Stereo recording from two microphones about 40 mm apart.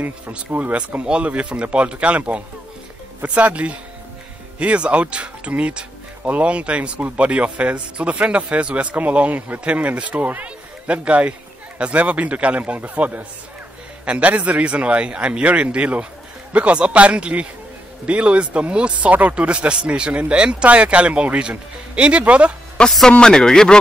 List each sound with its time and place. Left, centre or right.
0.5 s speech: right
1.0 s a man's voice: right
22.8 s speech: left